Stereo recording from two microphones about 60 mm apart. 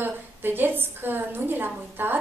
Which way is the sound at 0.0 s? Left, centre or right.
Right.